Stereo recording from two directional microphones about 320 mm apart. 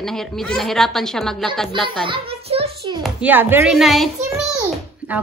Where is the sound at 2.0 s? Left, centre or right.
Centre.